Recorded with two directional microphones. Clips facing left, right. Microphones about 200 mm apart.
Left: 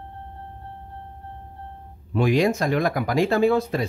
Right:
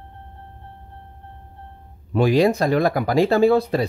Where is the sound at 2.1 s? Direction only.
35° right (ahead or behind).